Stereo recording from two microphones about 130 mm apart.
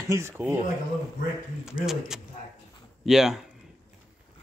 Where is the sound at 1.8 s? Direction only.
5° right (ahead or behind).